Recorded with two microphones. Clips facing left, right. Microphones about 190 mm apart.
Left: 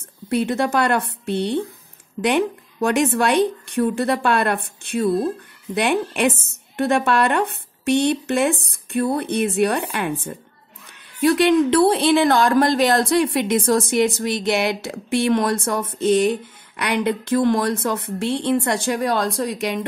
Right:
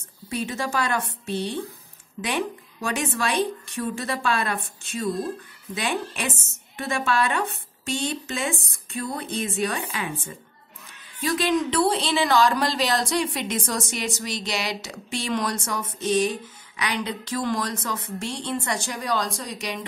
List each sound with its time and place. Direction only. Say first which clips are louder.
0.3 s speech: left 8 dB; 60° left (ahead or behind)